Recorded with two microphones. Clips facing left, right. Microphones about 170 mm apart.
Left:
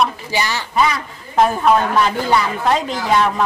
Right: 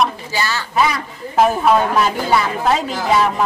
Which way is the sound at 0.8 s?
5° right (ahead or behind).